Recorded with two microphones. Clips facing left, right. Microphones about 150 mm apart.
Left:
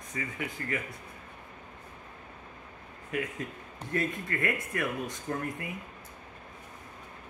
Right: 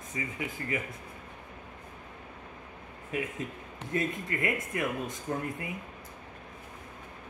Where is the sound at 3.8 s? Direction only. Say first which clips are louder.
Even; 20° right (ahead or behind).